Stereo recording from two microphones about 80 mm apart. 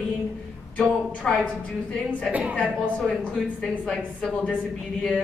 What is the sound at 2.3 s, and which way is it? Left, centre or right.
Speech, centre.